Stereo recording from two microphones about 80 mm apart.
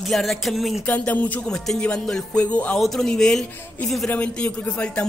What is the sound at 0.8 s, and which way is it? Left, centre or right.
Speech, centre.